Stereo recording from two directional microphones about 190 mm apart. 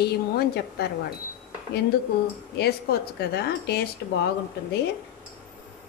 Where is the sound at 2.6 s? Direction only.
60° left (ahead or behind).